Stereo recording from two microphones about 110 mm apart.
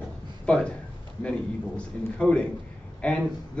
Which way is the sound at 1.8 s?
10° left (ahead or behind).